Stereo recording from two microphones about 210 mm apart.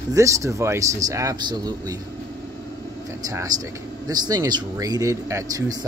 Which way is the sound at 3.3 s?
15° right (ahead or behind).